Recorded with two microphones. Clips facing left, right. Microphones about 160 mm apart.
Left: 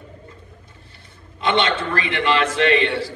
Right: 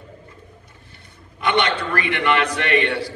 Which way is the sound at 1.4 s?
25° left (ahead or behind).